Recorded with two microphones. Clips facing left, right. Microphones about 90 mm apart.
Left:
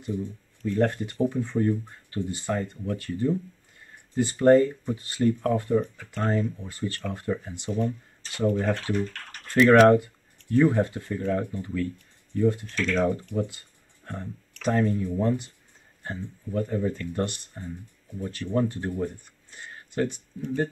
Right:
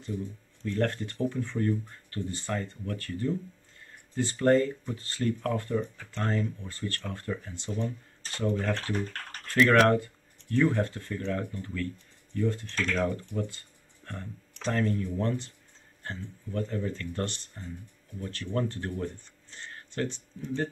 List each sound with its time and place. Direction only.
0.7 s speech: 15° left (ahead or behind)